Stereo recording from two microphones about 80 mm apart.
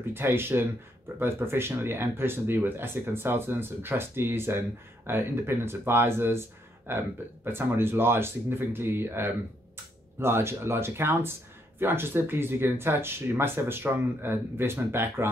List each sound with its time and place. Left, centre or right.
0.1 s speech: right